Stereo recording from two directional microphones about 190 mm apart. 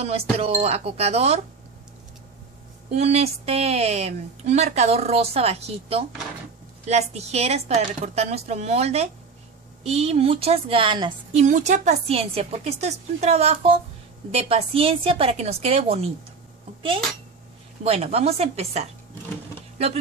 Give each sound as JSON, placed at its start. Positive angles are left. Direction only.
{"t": 0.0, "sound": "a woman's voice", "side_deg": -30}
{"t": 2.9, "sound": "a woman's voice", "side_deg": -35}
{"t": 11.4, "sound": "a woman's voice", "side_deg": -40}
{"t": 17.8, "sound": "a woman's voice", "side_deg": -30}